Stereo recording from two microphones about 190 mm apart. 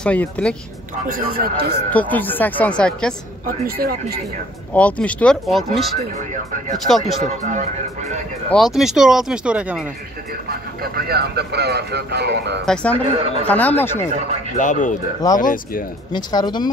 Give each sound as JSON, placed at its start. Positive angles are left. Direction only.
{"t": 0.0, "sound": "speech", "side_deg": 5}
{"t": 1.0, "sound": "speech", "side_deg": -50}
{"t": 1.9, "sound": "speech", "side_deg": 10}
{"t": 3.6, "sound": "speech", "side_deg": -50}
{"t": 4.7, "sound": "speech", "side_deg": 5}
{"t": 7.4, "sound": "speech", "side_deg": -40}
{"t": 8.5, "sound": "speech", "side_deg": 0}
{"t": 10.8, "sound": "speech", "side_deg": -55}
{"t": 12.6, "sound": "speech", "side_deg": 5}
{"t": 13.0, "sound": "speech", "side_deg": -30}
{"t": 13.5, "sound": "speech", "side_deg": 10}
{"t": 14.6, "sound": "speech", "side_deg": 40}
{"t": 16.1, "sound": "speech", "side_deg": 20}